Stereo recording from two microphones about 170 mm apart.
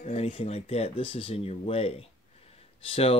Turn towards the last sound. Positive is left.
turn(degrees=35)  # may be behind; listen again after turning